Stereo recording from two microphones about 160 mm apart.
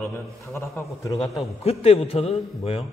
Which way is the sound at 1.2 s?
Centre (ahead or behind).